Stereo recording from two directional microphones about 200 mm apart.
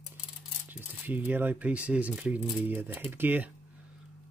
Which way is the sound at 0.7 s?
10° right (ahead or behind).